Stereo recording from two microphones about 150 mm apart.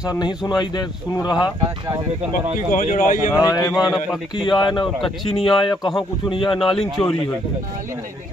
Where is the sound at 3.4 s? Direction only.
25° left (ahead or behind).